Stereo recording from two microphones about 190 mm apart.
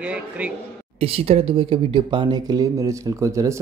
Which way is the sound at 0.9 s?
30° right (ahead or behind).